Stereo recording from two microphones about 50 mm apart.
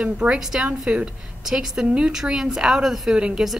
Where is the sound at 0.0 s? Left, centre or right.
Right.